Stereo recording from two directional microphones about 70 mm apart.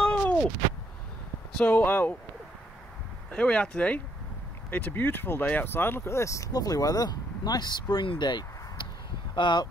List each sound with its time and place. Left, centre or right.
0.0 s a sound: centre
1.6 s speech: left
3.3 s speech: centre; by 9.7 s left